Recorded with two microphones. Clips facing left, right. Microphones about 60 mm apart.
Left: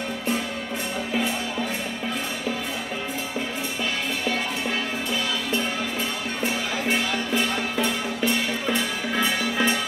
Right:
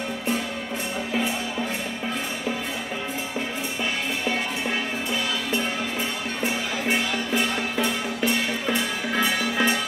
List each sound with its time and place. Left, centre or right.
6.4 s music: centre